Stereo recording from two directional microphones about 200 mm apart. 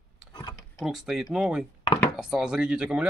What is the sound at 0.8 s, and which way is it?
Speech, centre (ahead or behind).